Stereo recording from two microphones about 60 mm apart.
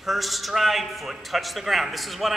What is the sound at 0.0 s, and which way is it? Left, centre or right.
A man's voice, centre.